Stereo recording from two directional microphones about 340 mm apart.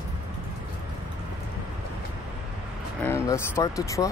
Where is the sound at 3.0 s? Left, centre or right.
Centre.